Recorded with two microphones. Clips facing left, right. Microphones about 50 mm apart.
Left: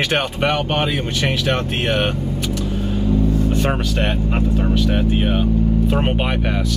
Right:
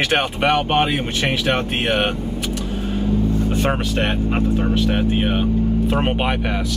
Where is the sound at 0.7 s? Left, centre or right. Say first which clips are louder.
Right 2 dB; right.